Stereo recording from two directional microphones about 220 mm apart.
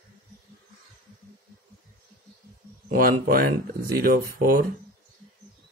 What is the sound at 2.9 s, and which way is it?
Speech, 40° right (ahead or behind).